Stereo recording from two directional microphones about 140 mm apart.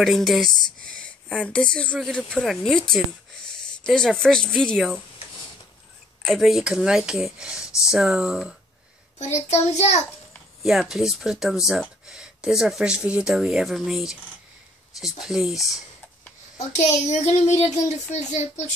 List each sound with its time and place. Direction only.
0.0 s speech: centre (ahead or behind)
6.2 s speech: centre (ahead or behind)
9.2 s child singing: 55° left (ahead or behind)
10.6 s speech: centre (ahead or behind)
16.8 s child singing: 55° left (ahead or behind)
17.8 s speech: 55° left (ahead or behind)